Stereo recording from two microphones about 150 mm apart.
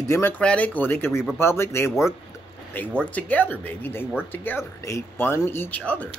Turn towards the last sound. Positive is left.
turn(degrees=10)  # may be behind; listen again after turning